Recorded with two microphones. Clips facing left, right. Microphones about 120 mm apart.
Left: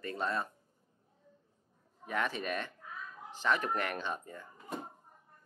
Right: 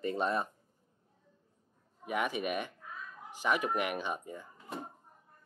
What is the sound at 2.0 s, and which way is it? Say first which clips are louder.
Speech: right 2 dB; 15° right (ahead or behind).